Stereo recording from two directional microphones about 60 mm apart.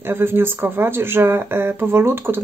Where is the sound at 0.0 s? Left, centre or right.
Right.